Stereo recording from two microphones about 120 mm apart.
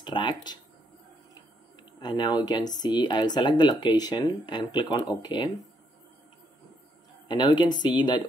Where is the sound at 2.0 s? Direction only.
35° left (ahead or behind).